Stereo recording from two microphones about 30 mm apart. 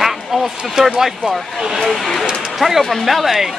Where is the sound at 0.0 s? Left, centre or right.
Centre.